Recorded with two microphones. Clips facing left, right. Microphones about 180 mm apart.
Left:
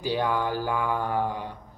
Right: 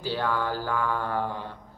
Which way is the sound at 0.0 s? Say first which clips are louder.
Left 2 dB; 15° left (ahead or behind).